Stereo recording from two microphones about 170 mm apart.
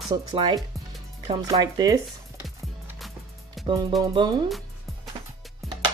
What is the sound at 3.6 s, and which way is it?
Speech, 25° right (ahead or behind).